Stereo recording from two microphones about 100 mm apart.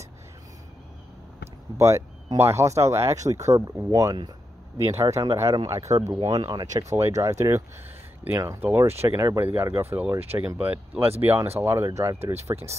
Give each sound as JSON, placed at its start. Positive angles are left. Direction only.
{"t": 1.8, "sound": "speech", "side_deg": -30}
{"t": 5.9, "sound": "speech", "side_deg": -45}